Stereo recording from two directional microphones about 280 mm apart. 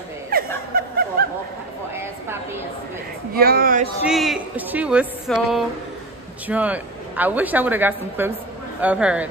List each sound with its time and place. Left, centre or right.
0.3 s snicker: right
3.3 s speech: right
4.0 s a woman's voice: centre